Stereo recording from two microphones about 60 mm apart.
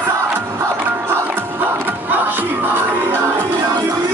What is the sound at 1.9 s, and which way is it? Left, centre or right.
Battle cry, right.